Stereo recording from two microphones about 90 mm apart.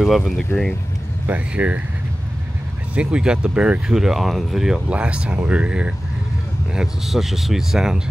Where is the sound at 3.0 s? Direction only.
10° right (ahead or behind).